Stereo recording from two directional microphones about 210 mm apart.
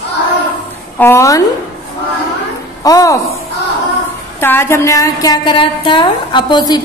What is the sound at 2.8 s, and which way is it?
Speech, 15° left (ahead or behind).